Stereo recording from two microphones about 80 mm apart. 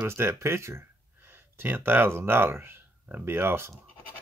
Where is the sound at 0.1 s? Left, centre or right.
Right.